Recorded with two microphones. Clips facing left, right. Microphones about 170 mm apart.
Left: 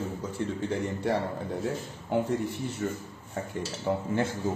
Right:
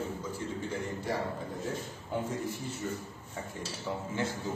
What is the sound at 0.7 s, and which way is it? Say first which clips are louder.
A man's voice: left 6 dB; 70° left (ahead or behind).